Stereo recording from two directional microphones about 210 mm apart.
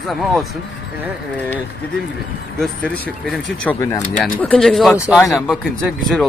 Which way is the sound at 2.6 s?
5° left (ahead or behind).